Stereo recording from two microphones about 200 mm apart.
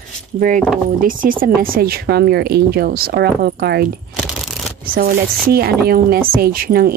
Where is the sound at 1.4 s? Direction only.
45° right (ahead or behind).